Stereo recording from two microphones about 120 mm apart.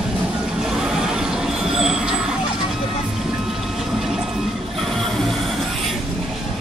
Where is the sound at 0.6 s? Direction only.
5° right (ahead or behind).